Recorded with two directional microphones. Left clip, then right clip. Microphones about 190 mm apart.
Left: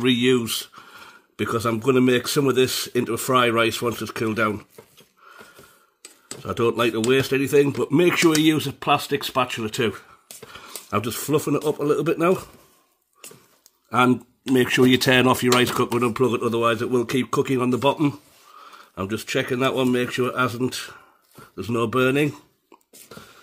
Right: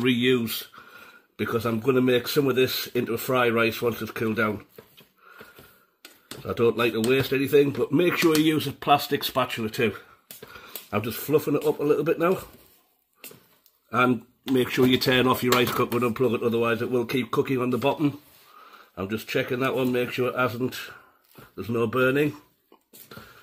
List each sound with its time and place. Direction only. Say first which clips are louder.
0.0 s speech: left 3 dB; 35° left (ahead or behind)
6.4 s speech: left 1 dB; 45° left (ahead or behind)
10.5 s speech: left 4 dB; 50° left (ahead or behind)
13.8 s speech: left 3 dB; 50° left (ahead or behind)